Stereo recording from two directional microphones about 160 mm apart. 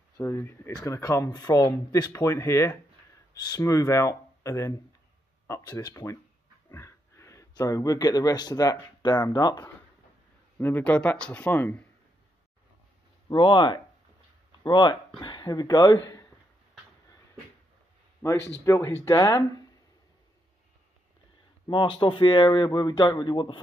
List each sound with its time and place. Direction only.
0.2 s speech: 15° left (ahead or behind)
10.6 s speech: 10° left (ahead or behind)
13.3 s speech: 30° left (ahead or behind)
18.2 s speech: 15° left (ahead or behind)
21.6 s speech: 30° left (ahead or behind)